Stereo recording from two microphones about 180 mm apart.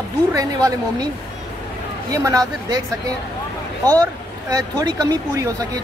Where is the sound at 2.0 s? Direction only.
20° right (ahead or behind).